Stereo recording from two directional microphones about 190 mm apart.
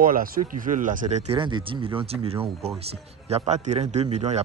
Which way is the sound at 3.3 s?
35° right (ahead or behind).